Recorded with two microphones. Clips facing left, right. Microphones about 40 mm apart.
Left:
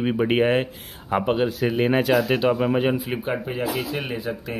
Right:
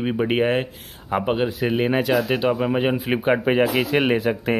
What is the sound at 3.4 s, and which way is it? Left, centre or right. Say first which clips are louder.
Speech: right 7 dB; right.